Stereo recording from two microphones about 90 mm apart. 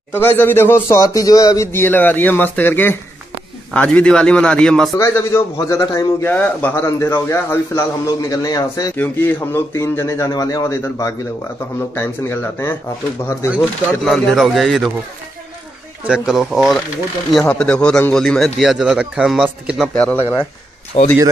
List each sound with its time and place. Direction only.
0.1 s speech: 25° left (ahead or behind); by 1.7 s 40° left (ahead or behind)
1.7 s a man's voice: 25° left (ahead or behind); by 4.9 s 5° left (ahead or behind)
4.9 s speech: 35° left (ahead or behind)
6.3 s a man's voice: 15° left (ahead or behind)
6.7 s speech: 30° left (ahead or behind)
8.2 s a man's voice: 45° left (ahead or behind)
8.9 s speech: 20° left (ahead or behind)
9.8 s speech: 35° left (ahead or behind)
13.6 s speech: centre (ahead or behind)
16.1 s speech: 5° right (ahead or behind)
17.5 s a man's voice: 10° left (ahead or behind); by 19.8 s 10° right (ahead or behind)
19.8 s a man's voice: 15° left (ahead or behind)
20.2 s speech: 25° left (ahead or behind)